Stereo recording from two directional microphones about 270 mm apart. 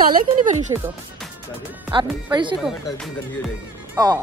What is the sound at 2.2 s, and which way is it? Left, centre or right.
Speech, centre.